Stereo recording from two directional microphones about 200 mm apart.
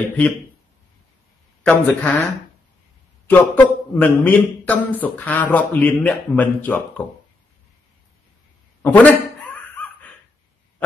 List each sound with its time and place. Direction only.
1.6 s a man's voice: 10° left (ahead or behind)
3.3 s a man's voice: 10° left (ahead or behind)
8.8 s a sound: 5° left (ahead or behind)